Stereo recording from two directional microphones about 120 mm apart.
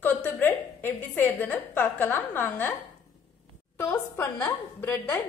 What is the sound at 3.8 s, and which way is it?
A woman's voice, 20° left (ahead or behind).